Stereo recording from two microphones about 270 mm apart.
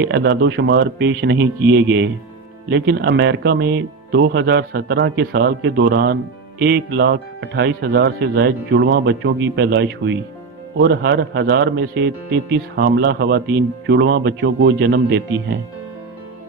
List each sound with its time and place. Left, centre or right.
0.0 s speech: right